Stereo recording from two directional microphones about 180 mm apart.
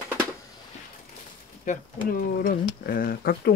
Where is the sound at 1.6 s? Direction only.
50° left (ahead or behind).